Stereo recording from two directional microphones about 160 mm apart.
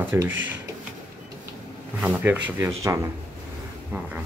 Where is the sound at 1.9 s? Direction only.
10° right (ahead or behind).